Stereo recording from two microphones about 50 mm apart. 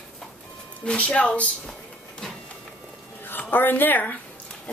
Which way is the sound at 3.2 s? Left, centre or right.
Left.